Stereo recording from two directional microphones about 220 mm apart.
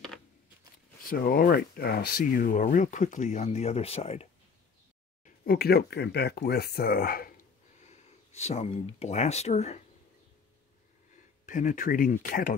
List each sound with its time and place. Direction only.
1.0 s speech: 45° left (ahead or behind); by 4.3 s 25° left (ahead or behind)
5.2 s speech: 40° left (ahead or behind)
7.8 s speech: 30° left (ahead or behind)
11.4 s speech: 35° left (ahead or behind)